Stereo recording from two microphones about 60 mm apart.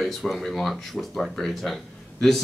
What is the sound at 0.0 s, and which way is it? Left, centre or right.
A man's voice, centre.